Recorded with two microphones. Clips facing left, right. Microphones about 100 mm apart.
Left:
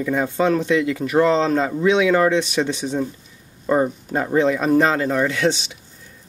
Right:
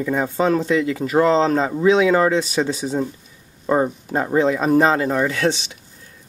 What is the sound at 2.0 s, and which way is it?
Speech, 20° right (ahead or behind).